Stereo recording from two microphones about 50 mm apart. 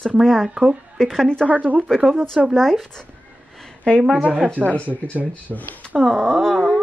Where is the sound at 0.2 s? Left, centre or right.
Centre.